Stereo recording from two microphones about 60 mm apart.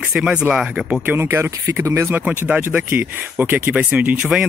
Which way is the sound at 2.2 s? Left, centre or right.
Right.